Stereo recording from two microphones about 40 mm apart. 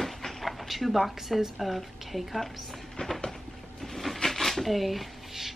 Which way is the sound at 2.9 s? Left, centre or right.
Centre.